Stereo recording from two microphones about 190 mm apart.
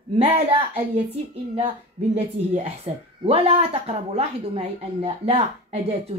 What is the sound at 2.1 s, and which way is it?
A woman's voice, 30° right (ahead or behind).